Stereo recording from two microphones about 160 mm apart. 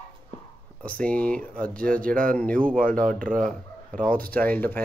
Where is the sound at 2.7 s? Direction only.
60° right (ahead or behind).